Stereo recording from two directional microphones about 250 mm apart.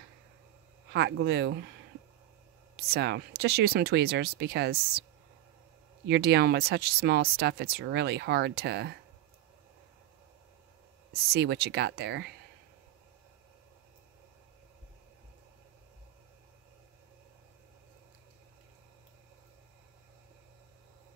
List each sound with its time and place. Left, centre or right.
0.9 s speech: right
2.7 s speech: right
6.0 s speech: right
11.3 s speech: right